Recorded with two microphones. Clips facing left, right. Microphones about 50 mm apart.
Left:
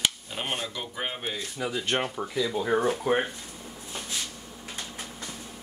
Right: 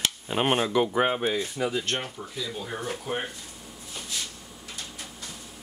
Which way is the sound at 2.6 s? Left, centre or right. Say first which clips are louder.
Left 9 dB; left.